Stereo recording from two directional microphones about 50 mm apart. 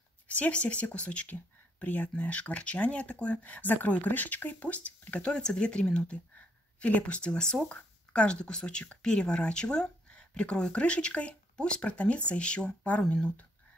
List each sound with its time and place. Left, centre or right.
0.3 s speech: left
5.1 s speech: centre